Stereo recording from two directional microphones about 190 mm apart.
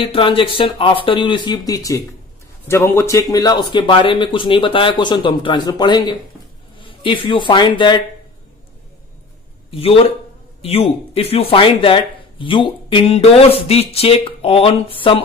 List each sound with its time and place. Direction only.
0.0 s a man's voice: 30° left (ahead or behind)
9.7 s speech: 30° left (ahead or behind)